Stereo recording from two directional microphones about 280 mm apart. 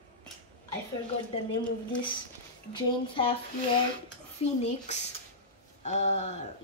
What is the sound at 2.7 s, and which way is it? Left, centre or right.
Speech, centre.